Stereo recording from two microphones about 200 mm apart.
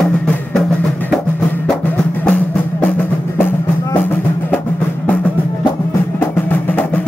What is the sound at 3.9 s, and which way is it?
Music, 10° left (ahead or behind).